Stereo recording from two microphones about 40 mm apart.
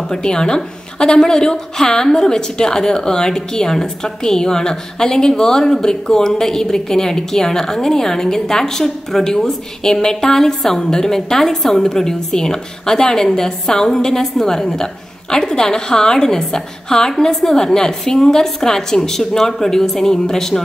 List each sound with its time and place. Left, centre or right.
0.1 s a woman's voice: centre
5.3 s a woman's voice: centre